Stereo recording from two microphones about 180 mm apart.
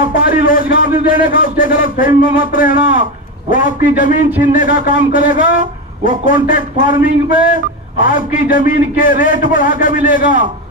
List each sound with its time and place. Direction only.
0.1 s a man's voice: 50° left (ahead or behind)